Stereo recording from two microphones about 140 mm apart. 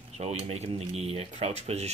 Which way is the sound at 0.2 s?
45° right (ahead or behind).